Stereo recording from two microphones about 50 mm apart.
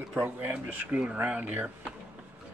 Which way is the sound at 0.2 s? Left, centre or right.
Right.